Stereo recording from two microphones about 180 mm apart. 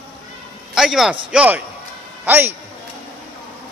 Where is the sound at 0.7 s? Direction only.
Centre (ahead or behind).